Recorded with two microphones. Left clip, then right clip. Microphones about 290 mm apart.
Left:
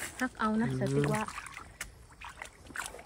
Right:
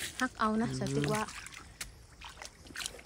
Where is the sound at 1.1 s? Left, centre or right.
Centre.